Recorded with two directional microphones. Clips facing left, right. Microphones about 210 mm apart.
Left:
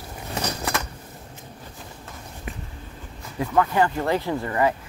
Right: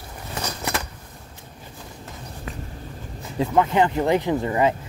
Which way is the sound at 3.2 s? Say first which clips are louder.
Right 2 dB; 20° right (ahead or behind).